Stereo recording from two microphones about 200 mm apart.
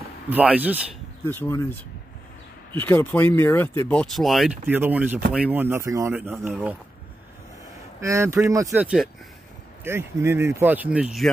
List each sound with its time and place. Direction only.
0.3 s speech: 5° right (ahead or behind)
1.2 s speech: 10° left (ahead or behind)
2.8 s speech: 10° left (ahead or behind); by 6.8 s 5° right (ahead or behind)
8.0 s speech: 15° right (ahead or behind)
8.8 s speech: centre (ahead or behind)
9.8 s speech: 10° right (ahead or behind)